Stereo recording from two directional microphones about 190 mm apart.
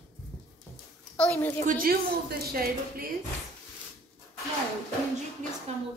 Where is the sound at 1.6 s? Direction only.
45° right (ahead or behind).